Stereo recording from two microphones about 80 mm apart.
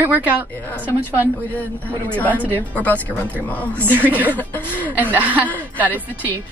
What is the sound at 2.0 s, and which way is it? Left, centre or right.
Speech, centre.